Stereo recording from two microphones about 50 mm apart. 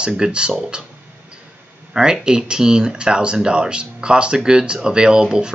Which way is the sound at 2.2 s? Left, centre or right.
Centre.